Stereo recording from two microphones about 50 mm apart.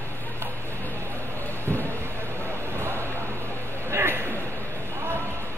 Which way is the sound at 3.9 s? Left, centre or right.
Right.